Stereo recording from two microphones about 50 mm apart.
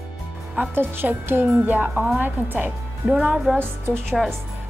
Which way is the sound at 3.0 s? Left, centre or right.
Right.